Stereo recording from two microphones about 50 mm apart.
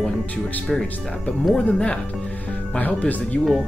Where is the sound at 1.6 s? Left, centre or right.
Left.